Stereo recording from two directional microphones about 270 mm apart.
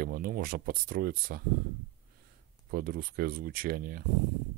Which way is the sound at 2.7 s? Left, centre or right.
Right.